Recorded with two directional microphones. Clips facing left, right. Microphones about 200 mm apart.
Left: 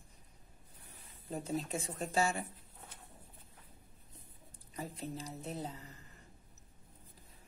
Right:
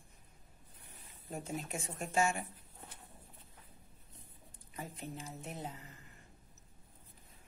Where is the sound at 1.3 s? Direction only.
35° left (ahead or behind).